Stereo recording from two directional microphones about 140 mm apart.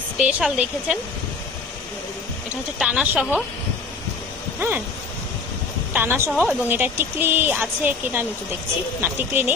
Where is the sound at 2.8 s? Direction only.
10° right (ahead or behind).